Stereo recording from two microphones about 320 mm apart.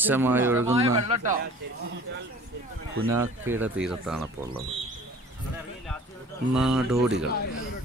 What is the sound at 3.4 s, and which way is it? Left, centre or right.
Speech, centre.